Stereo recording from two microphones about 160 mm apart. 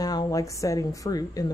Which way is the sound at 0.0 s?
25° left (ahead or behind).